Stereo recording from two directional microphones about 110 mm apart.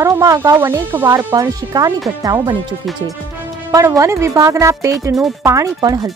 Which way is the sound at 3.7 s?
30° right (ahead or behind).